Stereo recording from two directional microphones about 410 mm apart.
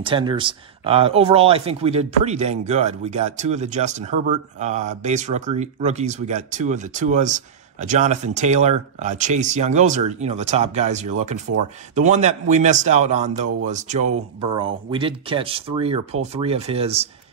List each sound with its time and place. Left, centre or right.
0.0 s speech: centre